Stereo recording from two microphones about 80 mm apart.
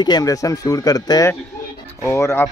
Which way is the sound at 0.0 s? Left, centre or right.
Left.